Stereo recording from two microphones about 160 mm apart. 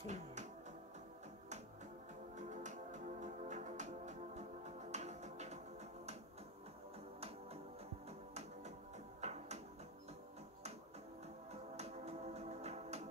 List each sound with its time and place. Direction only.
0.0 s music: 50° right (ahead or behind)
2.3 s music: 50° right (ahead or behind)
9.2 s music: 45° right (ahead or behind)
11.7 s music: 40° right (ahead or behind)